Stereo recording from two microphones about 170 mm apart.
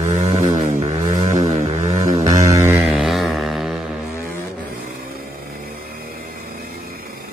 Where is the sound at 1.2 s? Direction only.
45° right (ahead or behind).